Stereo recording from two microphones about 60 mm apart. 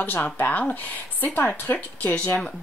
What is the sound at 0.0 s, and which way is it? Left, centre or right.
Speech, left.